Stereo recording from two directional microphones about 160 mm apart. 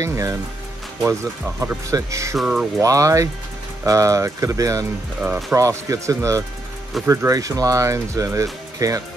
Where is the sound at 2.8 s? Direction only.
20° right (ahead or behind).